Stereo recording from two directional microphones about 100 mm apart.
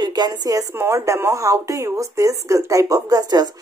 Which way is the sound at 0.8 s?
25° right (ahead or behind).